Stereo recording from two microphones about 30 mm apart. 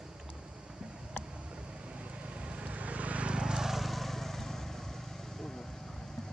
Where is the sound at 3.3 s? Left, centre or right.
Right.